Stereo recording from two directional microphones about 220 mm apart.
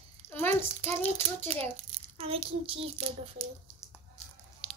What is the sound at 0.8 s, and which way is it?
A child's voice, 30° right (ahead or behind).